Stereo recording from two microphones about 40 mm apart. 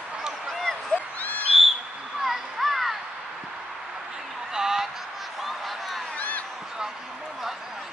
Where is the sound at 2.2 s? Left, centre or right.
Centre.